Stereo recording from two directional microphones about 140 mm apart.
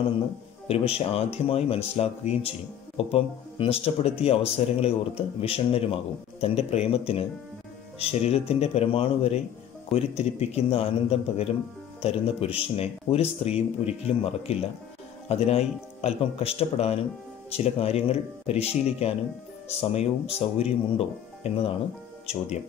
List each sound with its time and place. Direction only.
0.7 s speech: 45° left (ahead or behind)